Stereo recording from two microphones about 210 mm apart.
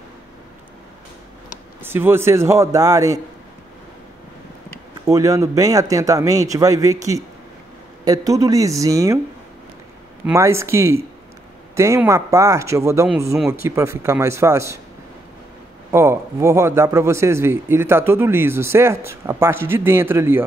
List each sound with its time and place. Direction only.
1.8 s speech: 10° right (ahead or behind)
5.0 s speech: 15° right (ahead or behind)
10.2 s speech: 15° right (ahead or behind)
15.9 s speech: 10° right (ahead or behind)